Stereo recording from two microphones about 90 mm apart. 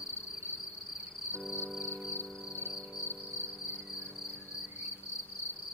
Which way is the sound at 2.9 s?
20° left (ahead or behind).